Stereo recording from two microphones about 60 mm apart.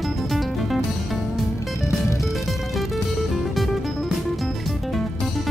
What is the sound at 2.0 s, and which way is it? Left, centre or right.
Music, left.